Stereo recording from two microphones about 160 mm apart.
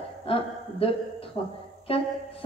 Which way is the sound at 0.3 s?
35° left (ahead or behind).